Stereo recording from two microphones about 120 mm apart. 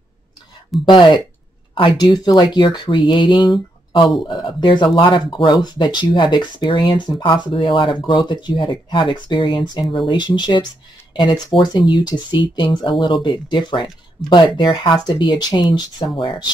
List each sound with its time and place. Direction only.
0.8 s speech: 40° left (ahead or behind)